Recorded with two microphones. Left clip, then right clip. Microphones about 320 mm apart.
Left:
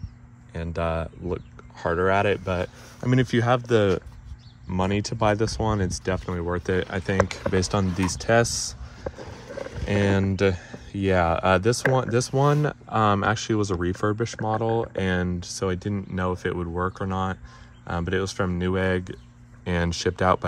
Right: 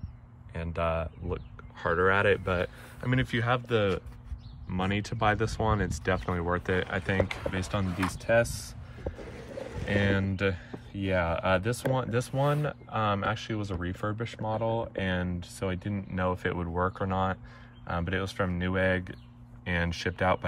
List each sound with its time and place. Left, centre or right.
0.5 s speech: centre
9.8 s speech: centre